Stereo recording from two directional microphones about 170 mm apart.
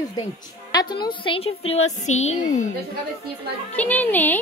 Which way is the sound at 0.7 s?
25° left (ahead or behind).